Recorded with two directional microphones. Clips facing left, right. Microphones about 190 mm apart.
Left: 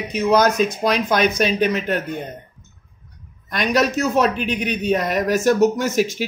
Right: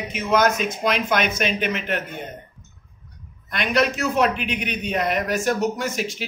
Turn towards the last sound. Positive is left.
turn(degrees=45)  # may be behind; listen again after turning